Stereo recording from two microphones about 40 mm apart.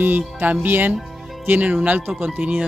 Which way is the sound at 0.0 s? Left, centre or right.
Right.